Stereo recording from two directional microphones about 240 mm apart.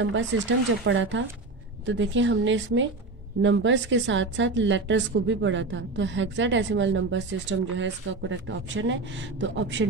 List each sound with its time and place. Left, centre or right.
0.0 s a woman's voice: right